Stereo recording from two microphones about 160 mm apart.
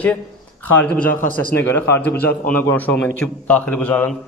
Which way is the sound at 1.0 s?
65° left (ahead or behind).